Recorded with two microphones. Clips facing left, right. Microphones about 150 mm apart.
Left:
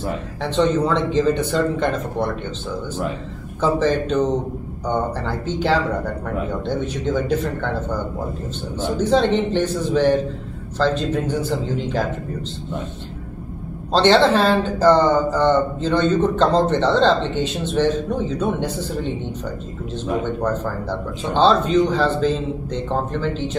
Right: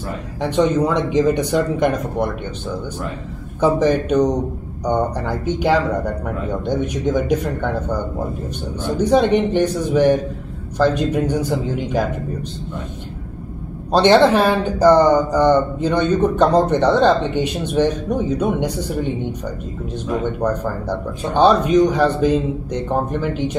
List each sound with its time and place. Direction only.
0.4 s speech: 10° right (ahead or behind)
3.6 s speech: 15° right (ahead or behind)
13.9 s speech: 15° right (ahead or behind)
20.3 s speech: 15° right (ahead or behind)